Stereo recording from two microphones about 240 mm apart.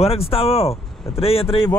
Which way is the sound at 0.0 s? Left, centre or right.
Left.